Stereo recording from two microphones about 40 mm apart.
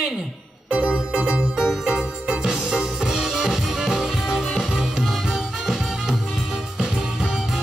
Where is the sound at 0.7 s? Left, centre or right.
Right.